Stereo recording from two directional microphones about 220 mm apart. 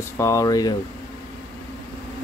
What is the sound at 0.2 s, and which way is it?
Speech, 15° left (ahead or behind).